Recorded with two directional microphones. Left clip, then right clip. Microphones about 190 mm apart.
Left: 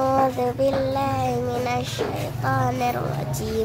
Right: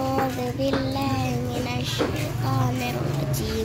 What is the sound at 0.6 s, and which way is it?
Child singing, 15° left (ahead or behind).